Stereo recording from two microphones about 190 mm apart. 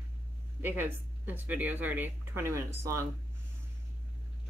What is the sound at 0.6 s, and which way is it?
Speech, 10° right (ahead or behind).